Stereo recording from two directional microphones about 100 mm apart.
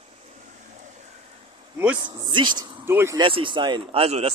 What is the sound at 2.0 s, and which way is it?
Speech, 50° right (ahead or behind).